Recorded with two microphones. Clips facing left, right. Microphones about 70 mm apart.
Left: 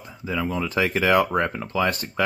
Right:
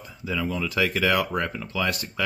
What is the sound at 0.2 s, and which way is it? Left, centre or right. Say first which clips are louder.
Speech: left 2 dB; left.